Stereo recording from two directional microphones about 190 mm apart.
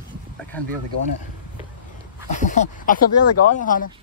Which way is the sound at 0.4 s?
10° left (ahead or behind).